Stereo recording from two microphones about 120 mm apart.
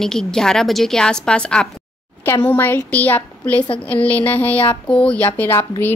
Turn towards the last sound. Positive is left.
turn(degrees=20)  # may be behind; listen again after turning